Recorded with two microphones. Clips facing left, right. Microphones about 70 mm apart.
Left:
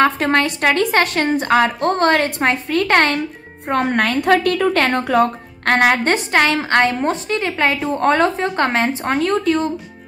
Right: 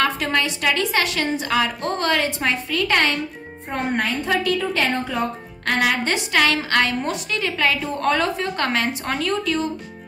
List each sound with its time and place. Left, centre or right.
0.0 s a woman's voice: left
3.6 s a woman's voice: left